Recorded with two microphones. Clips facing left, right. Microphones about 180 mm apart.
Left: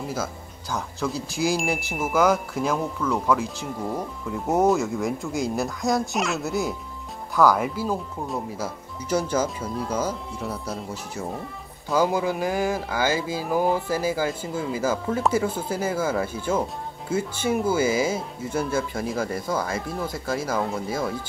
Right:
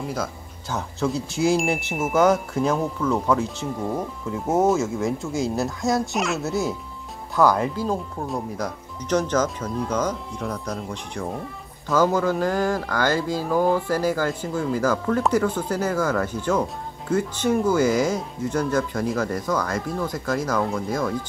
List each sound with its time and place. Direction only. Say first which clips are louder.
0.0 s speech: right 1 dB; 5° left (ahead or behind)
1.6 s speech: right 2 dB; centre (ahead or behind)